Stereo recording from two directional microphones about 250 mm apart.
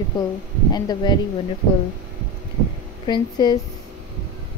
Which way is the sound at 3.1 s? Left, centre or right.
Centre.